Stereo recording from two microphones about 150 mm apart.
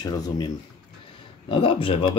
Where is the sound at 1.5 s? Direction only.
35° left (ahead or behind).